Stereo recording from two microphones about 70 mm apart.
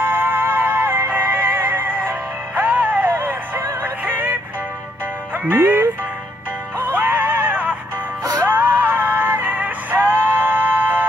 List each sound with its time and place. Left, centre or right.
0.0 s music: right
3.2 s music: right
5.5 s music: right
6.8 s a sound: right
8.4 s music: right